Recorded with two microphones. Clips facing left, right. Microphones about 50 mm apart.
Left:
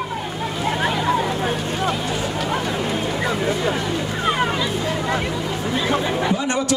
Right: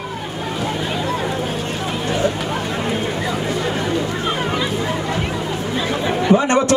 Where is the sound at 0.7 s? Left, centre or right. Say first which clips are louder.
Left 6 dB; left.